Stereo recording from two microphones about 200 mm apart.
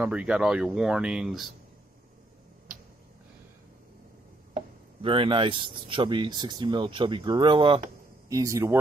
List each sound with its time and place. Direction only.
0.0 s speech: 5° right (ahead or behind)
4.6 s a man's voice: 25° right (ahead or behind)